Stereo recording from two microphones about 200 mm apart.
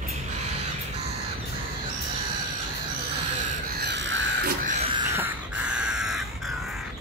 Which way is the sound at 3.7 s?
60° right (ahead or behind).